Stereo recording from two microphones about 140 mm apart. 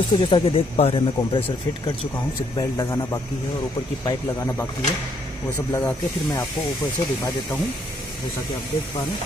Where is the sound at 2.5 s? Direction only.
35° left (ahead or behind).